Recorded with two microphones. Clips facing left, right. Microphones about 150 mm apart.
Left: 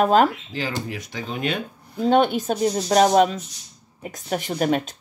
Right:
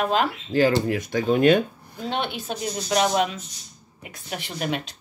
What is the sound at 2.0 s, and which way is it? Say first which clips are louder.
Speech: left 10 dB; 45° left (ahead or behind).